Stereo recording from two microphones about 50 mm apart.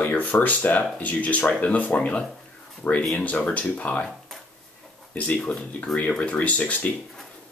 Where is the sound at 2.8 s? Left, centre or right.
Left.